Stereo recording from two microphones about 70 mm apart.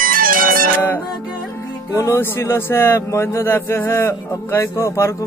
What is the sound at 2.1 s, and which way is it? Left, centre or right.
Speech, left.